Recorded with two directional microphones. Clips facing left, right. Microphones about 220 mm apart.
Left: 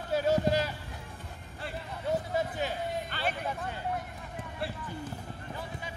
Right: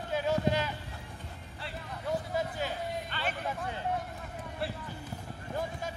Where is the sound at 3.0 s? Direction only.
40° left (ahead or behind).